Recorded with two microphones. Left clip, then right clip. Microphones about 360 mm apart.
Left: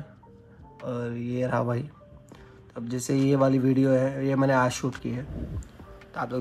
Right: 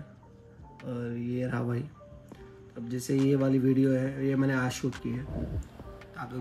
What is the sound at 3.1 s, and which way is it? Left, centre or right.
Speech, centre.